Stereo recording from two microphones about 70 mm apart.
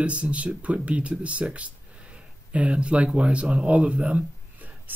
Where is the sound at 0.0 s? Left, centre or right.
Centre.